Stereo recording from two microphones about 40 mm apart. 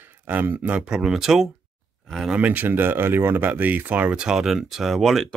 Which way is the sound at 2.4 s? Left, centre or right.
Right.